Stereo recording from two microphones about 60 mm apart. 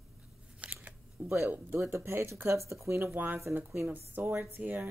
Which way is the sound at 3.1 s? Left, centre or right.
Right.